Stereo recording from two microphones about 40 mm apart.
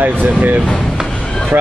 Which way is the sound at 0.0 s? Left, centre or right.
Right.